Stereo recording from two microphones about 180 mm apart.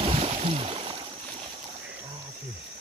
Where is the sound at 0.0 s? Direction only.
35° right (ahead or behind).